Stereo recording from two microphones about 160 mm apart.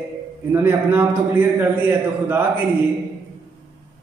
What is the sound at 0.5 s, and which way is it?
A man's voice, 15° right (ahead or behind).